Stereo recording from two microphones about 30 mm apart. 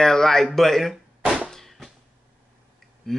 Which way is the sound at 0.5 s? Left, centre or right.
Centre.